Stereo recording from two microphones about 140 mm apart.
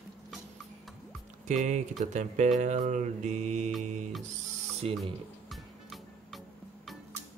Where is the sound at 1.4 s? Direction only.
60° right (ahead or behind).